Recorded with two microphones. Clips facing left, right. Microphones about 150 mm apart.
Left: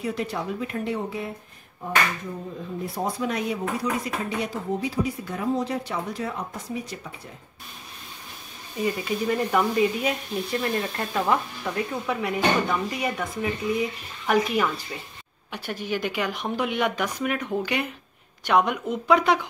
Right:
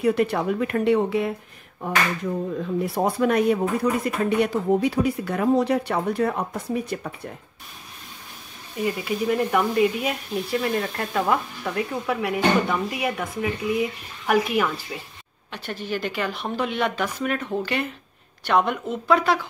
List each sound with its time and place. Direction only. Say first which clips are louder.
0.0 s speech: right 8 dB; 60° right (ahead or behind)
2.8 s speech: right 5 dB; 65° right (ahead or behind)
8.7 s speech: right 1 dB; 5° right (ahead or behind)
15.5 s speech: even; 10° left (ahead or behind)